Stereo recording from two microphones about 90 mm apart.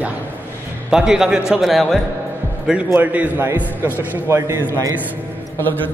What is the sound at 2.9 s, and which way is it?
Speech, 20° right (ahead or behind).